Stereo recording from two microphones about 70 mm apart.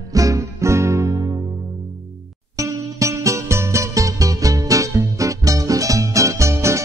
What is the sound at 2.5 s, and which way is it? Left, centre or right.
Music, right.